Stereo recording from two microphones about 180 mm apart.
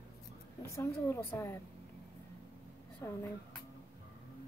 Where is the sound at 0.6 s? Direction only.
15° left (ahead or behind).